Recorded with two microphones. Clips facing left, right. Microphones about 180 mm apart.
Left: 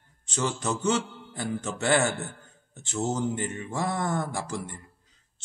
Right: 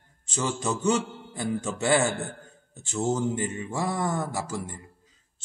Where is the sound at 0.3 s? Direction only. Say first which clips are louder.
Right 1 dB; 10° right (ahead or behind).